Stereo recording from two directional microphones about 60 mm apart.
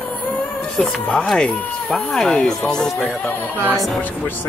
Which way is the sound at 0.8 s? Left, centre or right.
Centre.